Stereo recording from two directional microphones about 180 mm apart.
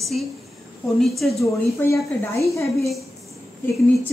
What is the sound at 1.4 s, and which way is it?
Speech, 15° left (ahead or behind).